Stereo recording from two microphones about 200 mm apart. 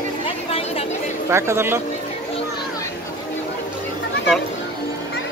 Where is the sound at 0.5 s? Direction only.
30° left (ahead or behind).